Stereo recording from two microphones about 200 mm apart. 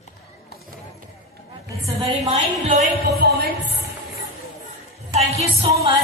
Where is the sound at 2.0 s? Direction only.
25° right (ahead or behind); by 3.5 s 50° right (ahead or behind).